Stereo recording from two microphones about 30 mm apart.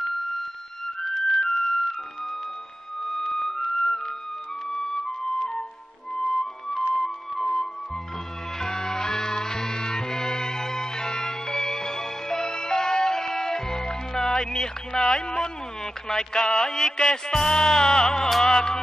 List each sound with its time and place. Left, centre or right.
1.0 s music: centre
1.4 s music: left
3.0 s music: centre
4.6 s flute: centre
7.0 s music: centre